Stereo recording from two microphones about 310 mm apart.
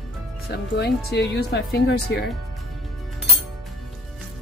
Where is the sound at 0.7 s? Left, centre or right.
Left.